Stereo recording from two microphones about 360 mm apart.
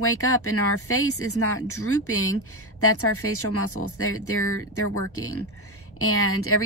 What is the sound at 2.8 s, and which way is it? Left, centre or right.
Speech, left.